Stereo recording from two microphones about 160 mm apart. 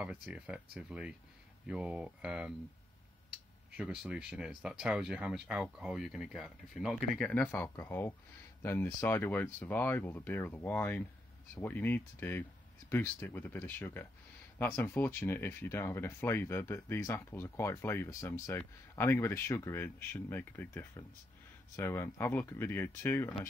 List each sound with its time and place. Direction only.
0.0 s speech: 5° right (ahead or behind)
7.2 s speech: 10° left (ahead or behind)